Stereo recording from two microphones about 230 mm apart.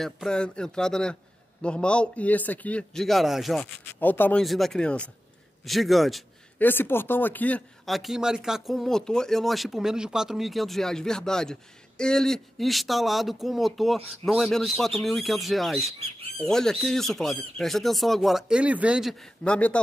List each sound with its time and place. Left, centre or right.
0.0 s a man's voice: centre